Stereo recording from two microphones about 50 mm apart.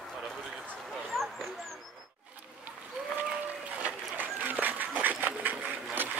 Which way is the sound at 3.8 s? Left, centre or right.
Right.